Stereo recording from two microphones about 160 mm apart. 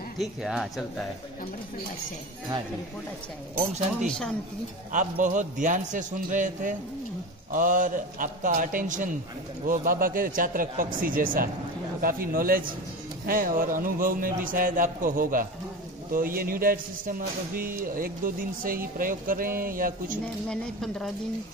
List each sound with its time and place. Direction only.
0.2 s speech: centre (ahead or behind)
3.5 s a man's voice: 50° right (ahead or behind)
20.4 s speech: 5° left (ahead or behind)